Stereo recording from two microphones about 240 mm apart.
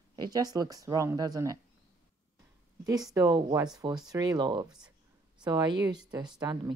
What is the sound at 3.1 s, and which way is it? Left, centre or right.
Speech, centre.